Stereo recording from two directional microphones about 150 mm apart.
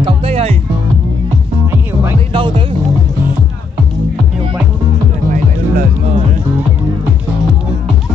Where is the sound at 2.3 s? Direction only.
35° right (ahead or behind).